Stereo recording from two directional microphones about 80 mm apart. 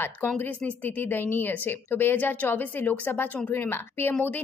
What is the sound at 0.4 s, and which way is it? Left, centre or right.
A woman's voice, left.